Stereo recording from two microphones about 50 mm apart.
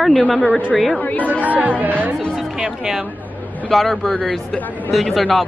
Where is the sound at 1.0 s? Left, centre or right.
Left.